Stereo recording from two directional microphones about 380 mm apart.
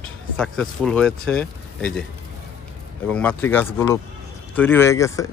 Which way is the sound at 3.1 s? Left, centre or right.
Centre.